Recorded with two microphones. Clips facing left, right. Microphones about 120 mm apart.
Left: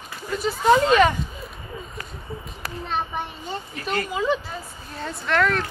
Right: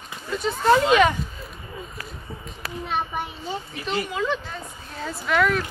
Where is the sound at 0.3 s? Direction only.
5° left (ahead or behind).